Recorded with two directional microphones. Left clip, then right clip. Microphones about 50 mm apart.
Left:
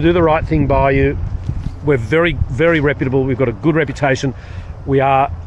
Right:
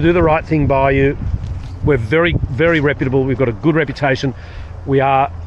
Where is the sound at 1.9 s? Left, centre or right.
Centre.